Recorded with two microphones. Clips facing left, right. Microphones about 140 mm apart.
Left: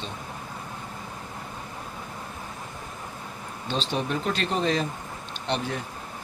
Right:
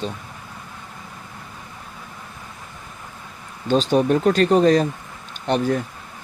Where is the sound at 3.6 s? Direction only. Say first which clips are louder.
Right 11 dB; 45° right (ahead or behind).